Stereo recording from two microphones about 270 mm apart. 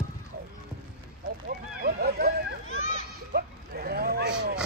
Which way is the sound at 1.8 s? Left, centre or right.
Right.